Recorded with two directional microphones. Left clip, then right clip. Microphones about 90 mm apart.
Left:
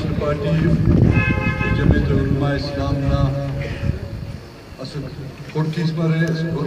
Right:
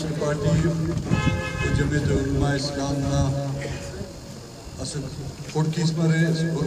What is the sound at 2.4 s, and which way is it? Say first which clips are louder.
Speech: left 3 dB; 25° right (ahead or behind).